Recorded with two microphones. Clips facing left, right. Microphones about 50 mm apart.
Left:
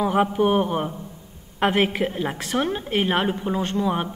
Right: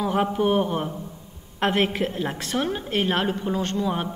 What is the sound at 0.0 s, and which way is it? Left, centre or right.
A woman's voice, centre.